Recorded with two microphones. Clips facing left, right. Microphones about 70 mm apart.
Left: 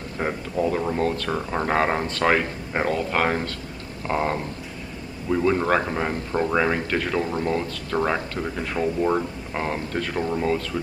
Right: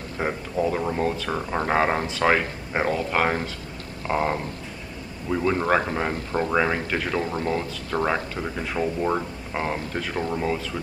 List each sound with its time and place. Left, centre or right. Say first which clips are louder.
0.2 s speech: even; centre
7.2 s speech: left 1 dB; right
7.5 s speech: left 1 dB; centre